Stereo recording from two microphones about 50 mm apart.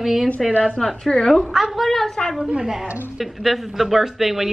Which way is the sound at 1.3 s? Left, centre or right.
Centre.